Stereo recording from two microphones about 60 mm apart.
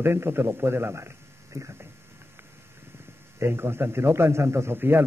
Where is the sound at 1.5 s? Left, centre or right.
Right.